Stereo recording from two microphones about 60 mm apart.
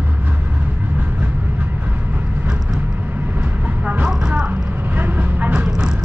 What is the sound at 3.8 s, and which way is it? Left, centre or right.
Vehicle, right.